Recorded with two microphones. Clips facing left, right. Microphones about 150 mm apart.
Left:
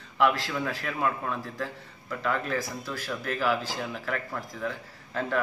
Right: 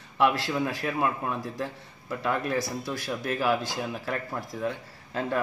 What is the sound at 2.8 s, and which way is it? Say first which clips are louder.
A man's voice: right 2 dB; 30° right (ahead or behind).